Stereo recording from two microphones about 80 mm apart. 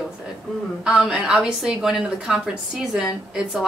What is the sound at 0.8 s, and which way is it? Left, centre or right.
A woman's voice, centre.